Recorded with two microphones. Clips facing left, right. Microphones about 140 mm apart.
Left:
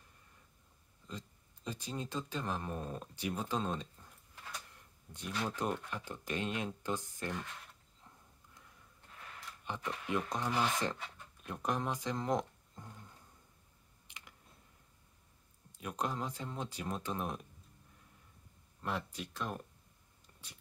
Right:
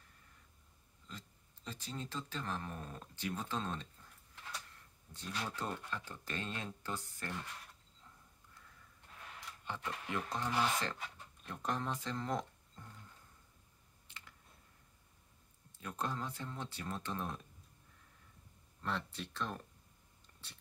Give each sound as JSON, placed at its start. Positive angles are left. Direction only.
{"t": 1.0, "sound": "speech", "side_deg": 15}
{"t": 9.7, "sound": "speech", "side_deg": 15}
{"t": 14.0, "sound": "typing", "side_deg": 15}
{"t": 15.8, "sound": "speech", "side_deg": 15}
{"t": 18.8, "sound": "speech", "side_deg": 10}